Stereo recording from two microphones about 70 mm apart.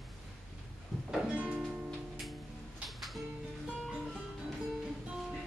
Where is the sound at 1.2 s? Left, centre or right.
Centre.